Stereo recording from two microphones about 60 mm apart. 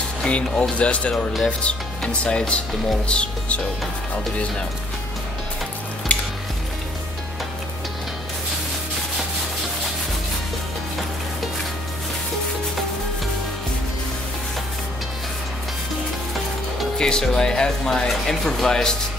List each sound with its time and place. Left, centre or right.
0.2 s speech: centre
6.1 s frying: left
17.0 s speech: centre